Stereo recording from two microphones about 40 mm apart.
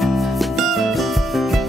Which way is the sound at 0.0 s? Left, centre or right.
Centre.